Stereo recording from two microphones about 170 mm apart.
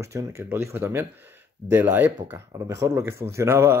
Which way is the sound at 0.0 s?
15° right (ahead or behind).